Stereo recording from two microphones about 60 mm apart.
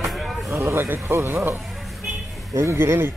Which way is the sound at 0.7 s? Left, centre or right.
Right.